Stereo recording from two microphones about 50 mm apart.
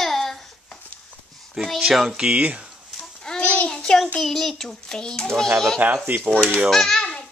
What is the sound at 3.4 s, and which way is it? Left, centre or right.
Child singing, left.